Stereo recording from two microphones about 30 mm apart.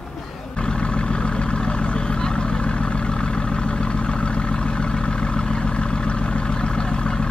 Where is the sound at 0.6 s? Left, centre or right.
Left.